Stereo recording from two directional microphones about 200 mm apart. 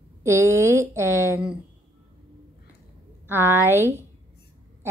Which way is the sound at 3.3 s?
10° right (ahead or behind).